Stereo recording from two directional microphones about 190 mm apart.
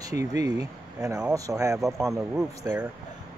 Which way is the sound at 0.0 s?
20° right (ahead or behind).